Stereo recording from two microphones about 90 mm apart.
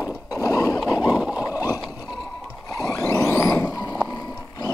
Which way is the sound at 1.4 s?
45° left (ahead or behind).